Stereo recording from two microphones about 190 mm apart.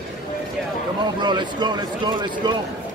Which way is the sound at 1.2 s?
25° right (ahead or behind).